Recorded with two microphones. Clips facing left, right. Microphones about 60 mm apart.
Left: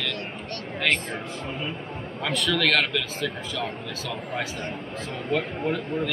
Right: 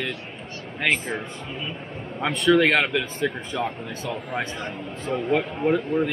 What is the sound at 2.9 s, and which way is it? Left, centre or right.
Speech, right.